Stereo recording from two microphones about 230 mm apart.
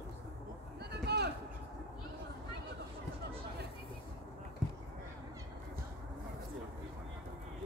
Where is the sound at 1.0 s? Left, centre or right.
Right.